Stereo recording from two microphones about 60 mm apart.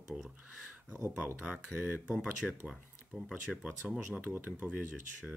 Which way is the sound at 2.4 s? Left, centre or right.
Centre.